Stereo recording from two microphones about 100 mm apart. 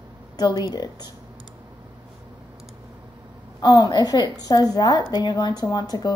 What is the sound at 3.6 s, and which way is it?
A woman's voice, 45° left (ahead or behind).